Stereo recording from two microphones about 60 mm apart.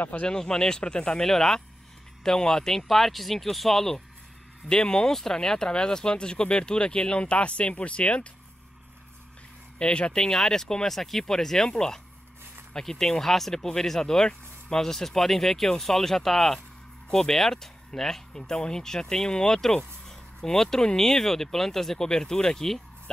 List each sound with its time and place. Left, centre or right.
0.0 s speech: left
0.3 s speech: centre
9.8 s speech: centre